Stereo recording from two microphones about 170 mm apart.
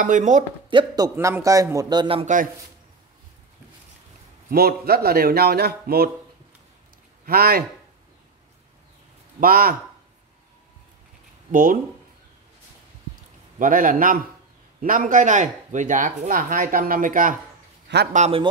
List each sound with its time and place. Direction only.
0.0 s speech: 45° right (ahead or behind)
0.7 s speech: 25° right (ahead or behind)
4.5 s a man's voice: 65° right (ahead or behind)
7.2 s a man's voice: 65° right (ahead or behind)
9.4 s a man's voice: 60° right (ahead or behind)
11.5 s speech: 55° right (ahead or behind)
13.6 s a man's voice: 50° right (ahead or behind)